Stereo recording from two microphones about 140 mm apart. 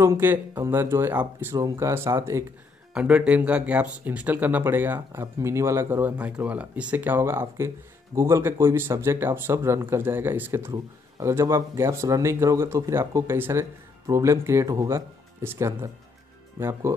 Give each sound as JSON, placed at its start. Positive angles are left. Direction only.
{"t": 0.0, "sound": "speech", "side_deg": -20}
{"t": 2.9, "sound": "speech", "side_deg": -10}